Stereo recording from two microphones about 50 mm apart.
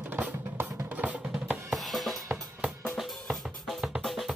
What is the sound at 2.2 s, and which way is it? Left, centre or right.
Drum kit, centre.